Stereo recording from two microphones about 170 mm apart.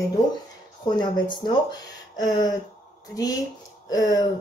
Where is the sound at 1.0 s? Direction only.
25° left (ahead or behind).